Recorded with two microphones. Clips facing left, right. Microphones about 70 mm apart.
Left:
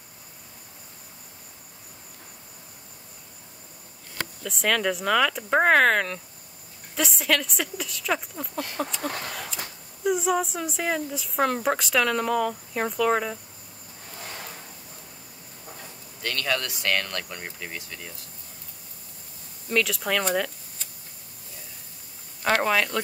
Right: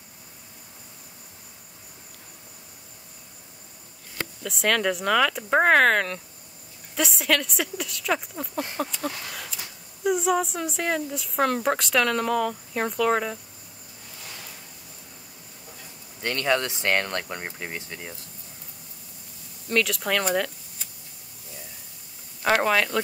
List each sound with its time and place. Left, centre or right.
4.4 s speech: centre
14.2 s a sound: left
16.2 s speech: right
19.7 s speech: centre
22.4 s speech: centre